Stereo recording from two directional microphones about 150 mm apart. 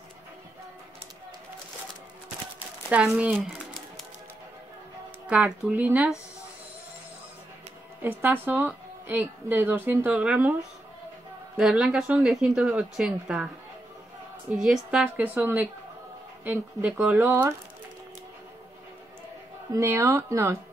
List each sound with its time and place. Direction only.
2.9 s a sound: 10° right (ahead or behind)
5.2 s speech: 5° right (ahead or behind)
8.0 s speech: 15° right (ahead or behind)
11.5 s speech: 5° right (ahead or behind)
14.5 s speech: 5° right (ahead or behind)
19.7 s speech: 20° right (ahead or behind)